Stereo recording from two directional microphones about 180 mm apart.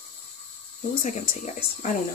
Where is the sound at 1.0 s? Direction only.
45° left (ahead or behind).